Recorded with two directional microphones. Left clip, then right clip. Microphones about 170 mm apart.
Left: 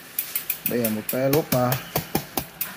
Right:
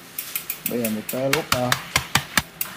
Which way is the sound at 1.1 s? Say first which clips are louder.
Even; 30° left (ahead or behind).